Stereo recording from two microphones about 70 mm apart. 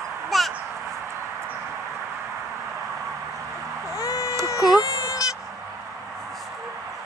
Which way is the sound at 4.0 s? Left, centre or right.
Left.